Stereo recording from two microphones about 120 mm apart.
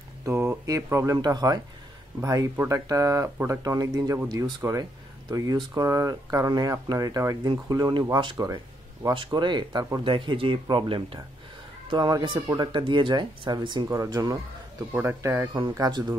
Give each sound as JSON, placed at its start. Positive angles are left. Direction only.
{"t": 0.2, "sound": "a sound", "side_deg": -20}
{"t": 0.9, "sound": "speech", "side_deg": -30}
{"t": 10.0, "sound": "speech", "side_deg": -45}
{"t": 11.9, "sound": "speech", "side_deg": -35}
{"t": 13.8, "sound": "speech", "side_deg": -25}
{"t": 14.9, "sound": "speech", "side_deg": -20}
{"t": 15.5, "sound": "speech", "side_deg": -40}